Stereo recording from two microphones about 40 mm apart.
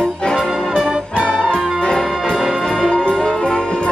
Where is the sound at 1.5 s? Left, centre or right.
Centre.